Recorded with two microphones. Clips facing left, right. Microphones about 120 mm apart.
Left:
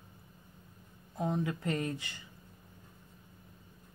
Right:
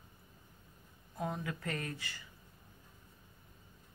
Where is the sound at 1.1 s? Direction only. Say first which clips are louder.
Left 5 dB; 20° left (ahead or behind).